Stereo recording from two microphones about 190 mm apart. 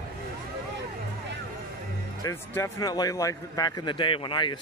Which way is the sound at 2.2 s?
15° left (ahead or behind).